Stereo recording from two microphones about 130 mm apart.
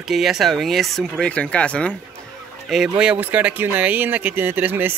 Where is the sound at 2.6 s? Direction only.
Centre (ahead or behind).